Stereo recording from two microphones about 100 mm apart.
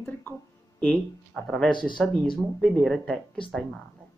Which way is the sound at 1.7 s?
50° left (ahead or behind).